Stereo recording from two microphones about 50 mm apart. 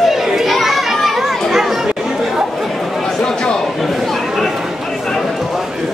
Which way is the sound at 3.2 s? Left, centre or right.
Centre.